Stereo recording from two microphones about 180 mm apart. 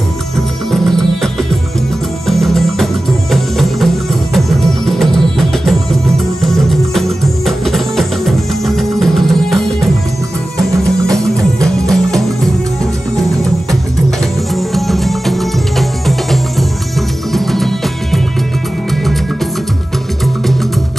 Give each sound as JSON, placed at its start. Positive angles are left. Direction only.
{"t": 0.7, "sound": "music", "side_deg": 0}